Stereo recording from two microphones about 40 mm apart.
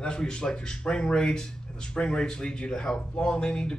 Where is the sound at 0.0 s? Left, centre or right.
Left.